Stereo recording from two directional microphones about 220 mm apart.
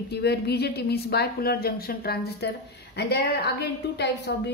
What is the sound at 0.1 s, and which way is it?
A woman's voice, 50° left (ahead or behind).